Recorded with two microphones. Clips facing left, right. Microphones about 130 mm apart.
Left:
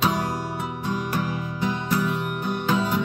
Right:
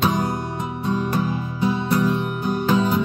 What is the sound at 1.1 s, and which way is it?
Music, 20° right (ahead or behind).